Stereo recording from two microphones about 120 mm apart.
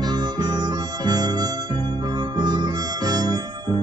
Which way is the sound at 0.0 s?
35° right (ahead or behind).